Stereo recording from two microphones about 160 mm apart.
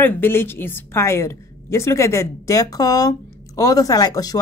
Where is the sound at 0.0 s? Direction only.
15° left (ahead or behind).